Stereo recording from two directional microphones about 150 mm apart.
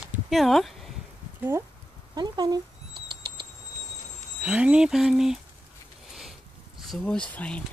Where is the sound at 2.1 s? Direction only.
25° right (ahead or behind).